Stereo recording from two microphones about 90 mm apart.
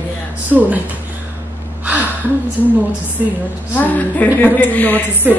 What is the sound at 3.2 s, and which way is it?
Music, 15° right (ahead or behind).